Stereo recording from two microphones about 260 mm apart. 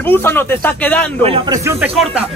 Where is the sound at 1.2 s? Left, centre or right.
Centre.